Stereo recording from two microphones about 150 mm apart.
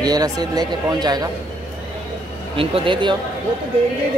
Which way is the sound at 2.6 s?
35° right (ahead or behind).